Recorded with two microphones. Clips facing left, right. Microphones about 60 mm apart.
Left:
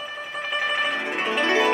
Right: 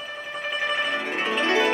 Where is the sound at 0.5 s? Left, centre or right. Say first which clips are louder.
Left 1 dB; centre.